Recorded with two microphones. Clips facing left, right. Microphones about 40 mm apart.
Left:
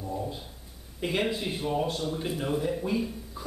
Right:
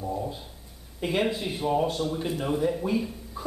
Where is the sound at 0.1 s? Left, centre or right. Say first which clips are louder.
Even; centre.